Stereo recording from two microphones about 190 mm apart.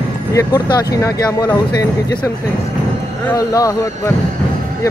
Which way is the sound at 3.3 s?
15° left (ahead or behind).